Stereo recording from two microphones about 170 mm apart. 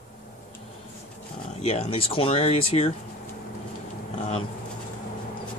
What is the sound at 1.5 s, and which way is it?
Speech, 40° left (ahead or behind).